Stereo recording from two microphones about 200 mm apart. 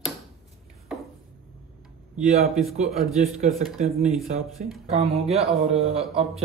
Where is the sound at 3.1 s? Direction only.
35° right (ahead or behind).